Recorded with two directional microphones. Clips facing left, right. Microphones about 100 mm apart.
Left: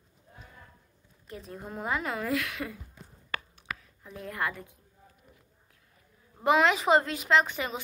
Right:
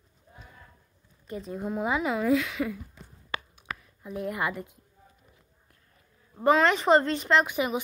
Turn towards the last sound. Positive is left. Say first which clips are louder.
# right 6 dB
turn(degrees=-15)  # may be behind; listen again after turning